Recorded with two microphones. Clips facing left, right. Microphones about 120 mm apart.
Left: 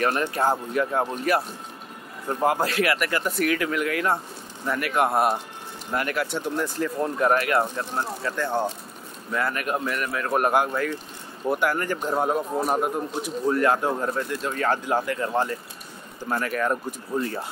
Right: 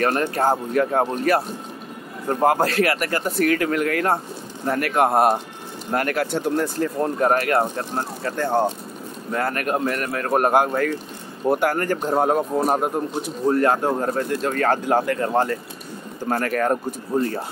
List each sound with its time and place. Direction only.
0.0 s a man's voice: 45° right (ahead or behind)
16.7 s speech: 40° right (ahead or behind)